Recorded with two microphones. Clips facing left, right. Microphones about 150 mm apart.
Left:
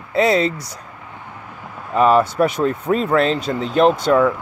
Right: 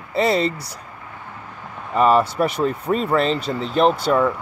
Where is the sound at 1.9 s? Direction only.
Centre (ahead or behind).